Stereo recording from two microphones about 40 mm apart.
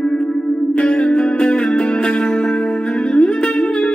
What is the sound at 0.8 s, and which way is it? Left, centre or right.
Music, left.